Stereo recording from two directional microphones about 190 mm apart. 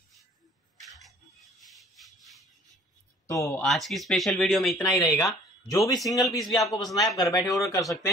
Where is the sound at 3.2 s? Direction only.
15° left (ahead or behind).